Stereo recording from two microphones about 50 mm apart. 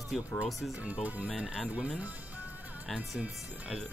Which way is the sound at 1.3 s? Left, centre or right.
Centre.